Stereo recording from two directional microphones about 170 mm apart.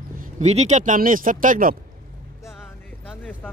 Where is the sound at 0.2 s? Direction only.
40° right (ahead or behind).